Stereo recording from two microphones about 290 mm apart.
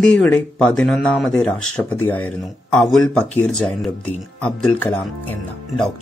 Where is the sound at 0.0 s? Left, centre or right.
Centre.